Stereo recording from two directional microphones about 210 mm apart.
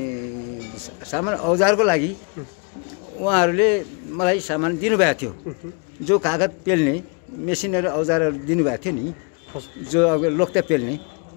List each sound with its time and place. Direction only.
1.1 s speech: centre (ahead or behind)
3.3 s speech: 10° left (ahead or behind)
9.9 s a man's voice: 5° left (ahead or behind)